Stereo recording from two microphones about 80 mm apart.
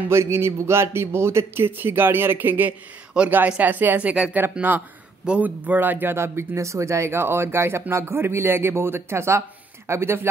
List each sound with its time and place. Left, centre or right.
0.1 s a man's voice: right